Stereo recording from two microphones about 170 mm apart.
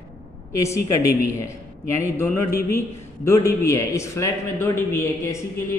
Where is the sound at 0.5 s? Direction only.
15° left (ahead or behind).